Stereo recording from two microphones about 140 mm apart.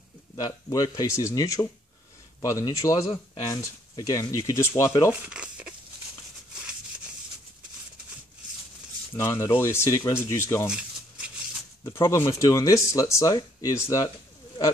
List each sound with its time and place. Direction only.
0.4 s speech: 25° left (ahead or behind)
5.2 s crumpling: 10° right (ahead or behind)
9.1 s speech: 20° left (ahead or behind)
10.7 s shuffling cards: 5° right (ahead or behind)
11.8 s speech: 20° left (ahead or behind)